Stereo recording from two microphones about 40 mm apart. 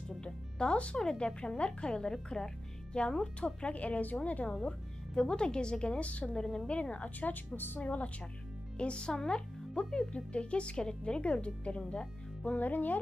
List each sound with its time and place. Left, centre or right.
0.2 s music: left
1.1 s speech: left
2.2 s music: centre
3.0 s a woman's voice: centre
3.3 s speech: left
5.2 s speech: left
6.0 s speech: left
6.3 s a woman's voice: centre
6.7 s speech: left
7.2 s a woman's voice: left
7.8 s speech: left
8.7 s speech: left
12.5 s a woman's voice: left